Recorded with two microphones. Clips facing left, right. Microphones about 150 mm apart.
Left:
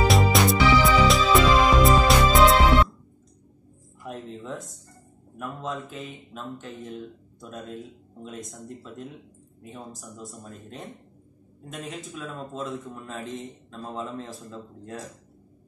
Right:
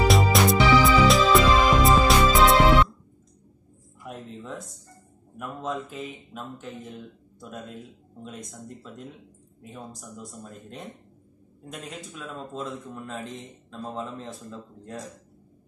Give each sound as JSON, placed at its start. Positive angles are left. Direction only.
{"t": 0.1, "sound": "music", "side_deg": 0}
{"t": 4.0, "sound": "a sound", "side_deg": 0}
{"t": 5.4, "sound": "speech", "side_deg": 0}